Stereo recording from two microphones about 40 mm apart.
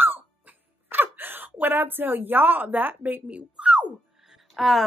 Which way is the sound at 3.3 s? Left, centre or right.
Right.